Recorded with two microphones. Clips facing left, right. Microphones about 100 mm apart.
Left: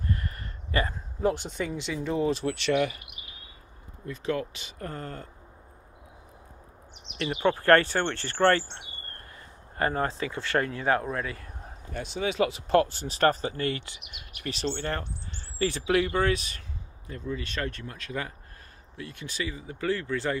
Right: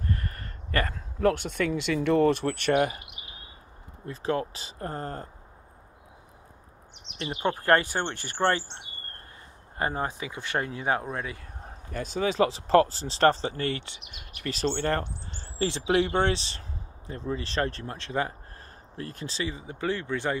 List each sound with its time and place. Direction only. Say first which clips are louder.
0.1 s a sound: left 1 dB; 45° right (ahead or behind)
1.2 s speech: right 3 dB; 65° right (ahead or behind); by 3.0 s 45° right (ahead or behind)
4.0 s speech: right 1 dB; 35° right (ahead or behind)
7.4 s speech: left 3 dB; 15° right (ahead or behind)
9.8 s speech: left 2 dB; 20° right (ahead or behind)
11.9 s speech: right 2 dB; 40° right (ahead or behind)
15.6 s speech: right 1 dB; 25° right (ahead or behind)
18.9 s speech: right 2 dB; 40° right (ahead or behind); by 20.3 s 20° right (ahead or behind)